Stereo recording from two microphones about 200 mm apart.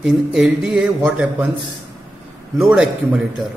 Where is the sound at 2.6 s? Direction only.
5° right (ahead or behind).